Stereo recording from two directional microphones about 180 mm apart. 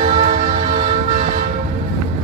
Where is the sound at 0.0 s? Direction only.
40° right (ahead or behind).